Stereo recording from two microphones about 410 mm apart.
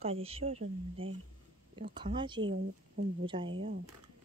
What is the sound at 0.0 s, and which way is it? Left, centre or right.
Speech, centre.